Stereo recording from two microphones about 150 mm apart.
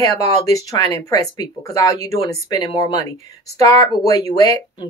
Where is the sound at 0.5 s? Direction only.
20° left (ahead or behind).